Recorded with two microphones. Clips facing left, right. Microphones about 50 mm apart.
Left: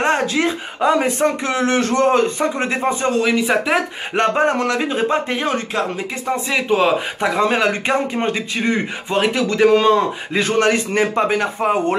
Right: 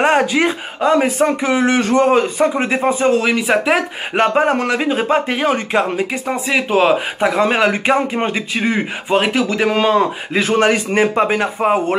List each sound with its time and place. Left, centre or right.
0.0 s speech: centre
0.7 s speech: centre